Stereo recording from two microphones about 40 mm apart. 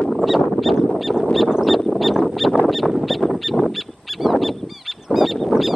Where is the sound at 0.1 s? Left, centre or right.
Centre.